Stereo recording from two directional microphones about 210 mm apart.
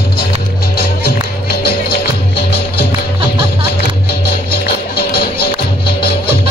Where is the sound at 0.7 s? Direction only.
45° left (ahead or behind).